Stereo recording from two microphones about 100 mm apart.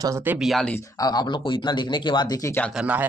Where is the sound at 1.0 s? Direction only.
45° left (ahead or behind).